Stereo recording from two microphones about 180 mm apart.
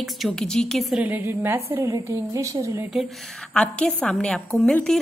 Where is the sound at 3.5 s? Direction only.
5° left (ahead or behind).